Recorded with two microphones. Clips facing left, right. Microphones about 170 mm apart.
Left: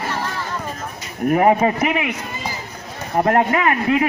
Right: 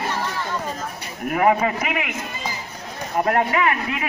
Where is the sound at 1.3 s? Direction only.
30° left (ahead or behind).